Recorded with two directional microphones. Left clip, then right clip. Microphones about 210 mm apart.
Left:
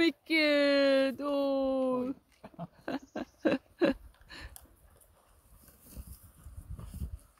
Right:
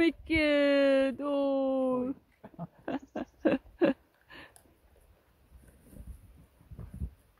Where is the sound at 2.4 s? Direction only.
15° right (ahead or behind).